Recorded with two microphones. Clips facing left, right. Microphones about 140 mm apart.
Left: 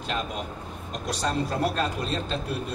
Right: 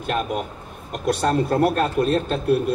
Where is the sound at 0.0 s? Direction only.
55° right (ahead or behind).